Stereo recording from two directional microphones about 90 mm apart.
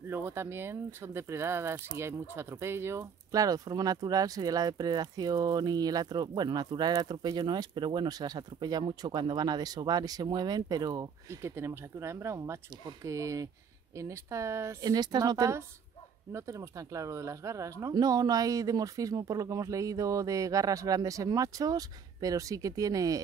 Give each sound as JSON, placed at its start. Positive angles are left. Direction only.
{"t": 0.1, "sound": "speech", "side_deg": -25}
{"t": 3.3, "sound": "speech", "side_deg": -40}
{"t": 11.2, "sound": "speech", "side_deg": -30}
{"t": 14.8, "sound": "speech", "side_deg": -50}
{"t": 16.3, "sound": "speech", "side_deg": -35}
{"t": 17.9, "sound": "speech", "side_deg": -45}